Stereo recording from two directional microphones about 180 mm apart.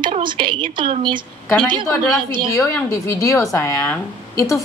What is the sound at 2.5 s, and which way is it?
Speech, 15° left (ahead or behind).